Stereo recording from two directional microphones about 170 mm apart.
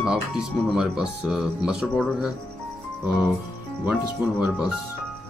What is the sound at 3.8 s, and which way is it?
Speech, 10° right (ahead or behind).